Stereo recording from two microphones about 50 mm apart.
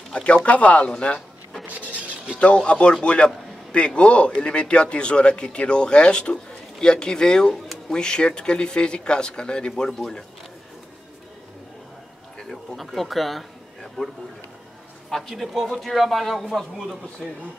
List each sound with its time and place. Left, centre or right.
0.1 s a man's voice: centre
1.7 s a sound: right
2.3 s a man's voice: left
12.4 s a man's voice: centre